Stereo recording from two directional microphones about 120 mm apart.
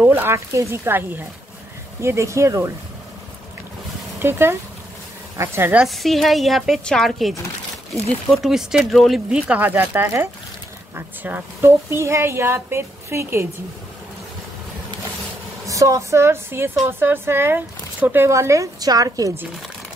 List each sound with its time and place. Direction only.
0.0 s speech: 20° right (ahead or behind)
4.2 s speech: 20° right (ahead or behind)
5.8 s a woman's voice: centre (ahead or behind)
9.5 s speech: 15° right (ahead or behind)
15.6 s speech: 25° right (ahead or behind)